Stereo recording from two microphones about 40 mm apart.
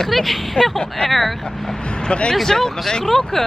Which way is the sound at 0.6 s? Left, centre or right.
Centre.